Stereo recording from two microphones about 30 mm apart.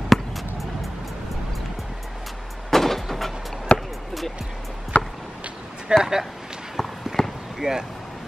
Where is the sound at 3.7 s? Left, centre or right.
Left.